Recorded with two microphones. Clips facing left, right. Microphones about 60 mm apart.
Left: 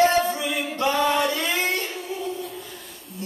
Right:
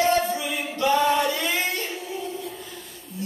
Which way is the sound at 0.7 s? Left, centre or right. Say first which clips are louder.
Right 2 dB; left.